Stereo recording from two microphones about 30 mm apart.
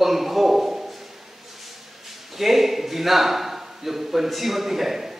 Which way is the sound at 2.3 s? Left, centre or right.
Centre.